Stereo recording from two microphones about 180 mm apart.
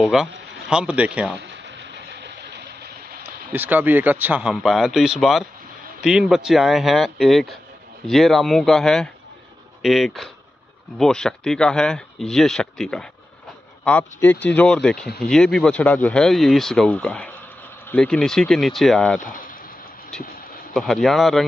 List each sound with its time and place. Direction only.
0.0 s speech: 5° right (ahead or behind)
0.3 s a sound: 85° right
0.7 s a man's voice: 5° right (ahead or behind)
1.4 s vehicle: 75° right (ahead or behind)
3.3 s a man's voice: 10° right (ahead or behind)
19.2 s a sound: 50° left (ahead or behind)
20.1 s speech: 5° left (ahead or behind)